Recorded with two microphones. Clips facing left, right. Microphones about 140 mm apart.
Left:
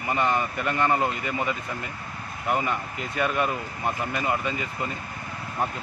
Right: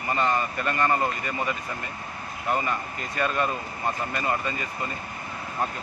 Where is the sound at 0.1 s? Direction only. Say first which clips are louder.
Even; 15° left (ahead or behind).